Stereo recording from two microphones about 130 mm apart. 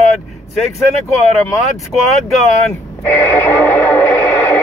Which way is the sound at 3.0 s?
15° left (ahead or behind).